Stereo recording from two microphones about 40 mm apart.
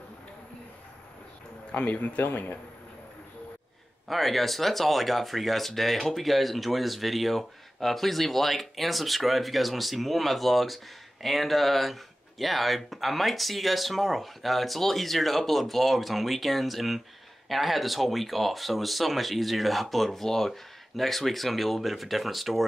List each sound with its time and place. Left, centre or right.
1.9 s speech: left
4.1 s speech: centre